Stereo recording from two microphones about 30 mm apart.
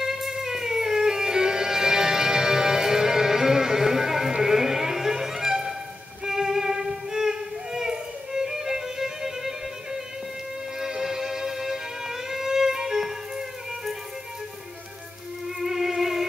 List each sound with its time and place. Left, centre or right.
0.0 s music: centre
10.8 s music: centre
15.4 s music: centre